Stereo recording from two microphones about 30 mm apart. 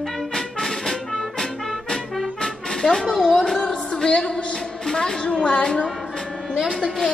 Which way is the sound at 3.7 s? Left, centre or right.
Centre.